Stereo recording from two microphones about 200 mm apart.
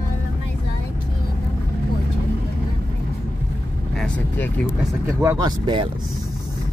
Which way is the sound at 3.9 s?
5° left (ahead or behind).